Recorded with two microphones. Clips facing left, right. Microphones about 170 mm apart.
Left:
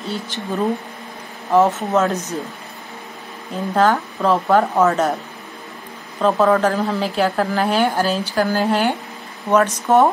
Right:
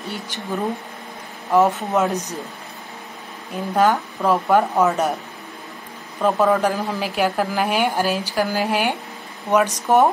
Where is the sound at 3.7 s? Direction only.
10° right (ahead or behind).